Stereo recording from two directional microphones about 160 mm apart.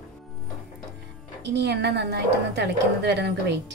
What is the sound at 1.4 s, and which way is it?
A woman's voice, 90° right.